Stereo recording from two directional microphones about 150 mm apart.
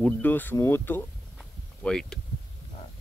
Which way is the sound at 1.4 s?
5° left (ahead or behind).